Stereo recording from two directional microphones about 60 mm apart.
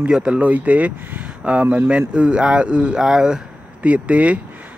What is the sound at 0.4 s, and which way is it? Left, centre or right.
Speech, right.